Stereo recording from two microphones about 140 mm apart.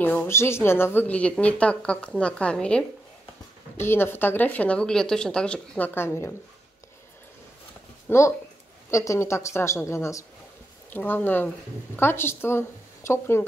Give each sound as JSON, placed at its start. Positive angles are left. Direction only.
{"t": 0.0, "sound": "a woman's voice", "side_deg": 15}
{"t": 8.1, "sound": "a woman's voice", "side_deg": 20}